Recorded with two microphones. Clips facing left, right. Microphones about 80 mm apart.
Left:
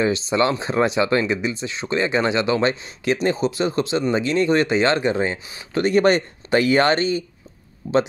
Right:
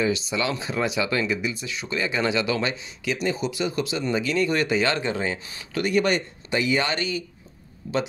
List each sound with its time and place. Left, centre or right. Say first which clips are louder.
0.0 s speech: left 5 dB; left
6.5 s speech: left 7 dB; left
7.8 s speech: left 7 dB; left